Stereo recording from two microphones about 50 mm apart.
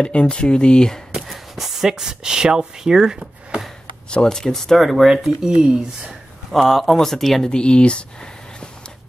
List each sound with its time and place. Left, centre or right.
0.0 s speech: left
1.2 s speech: centre
4.1 s speech: centre
5.1 s speech: centre
6.5 s speech: centre
7.4 s speech: centre